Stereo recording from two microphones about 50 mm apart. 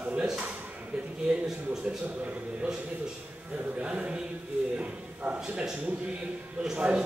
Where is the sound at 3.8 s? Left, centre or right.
Right.